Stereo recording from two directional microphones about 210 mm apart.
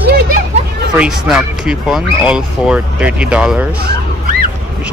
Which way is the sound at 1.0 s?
5° right (ahead or behind).